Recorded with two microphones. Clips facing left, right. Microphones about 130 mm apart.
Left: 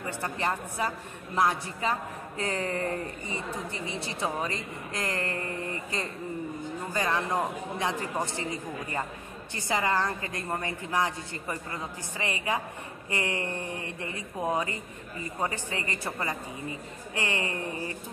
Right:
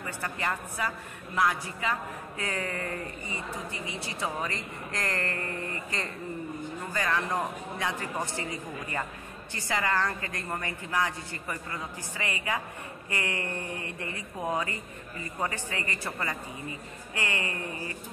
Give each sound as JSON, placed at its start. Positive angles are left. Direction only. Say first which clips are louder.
{"t": 0.2, "sound": "a woman's voice", "louder": "left 2 dB", "side_deg": 25}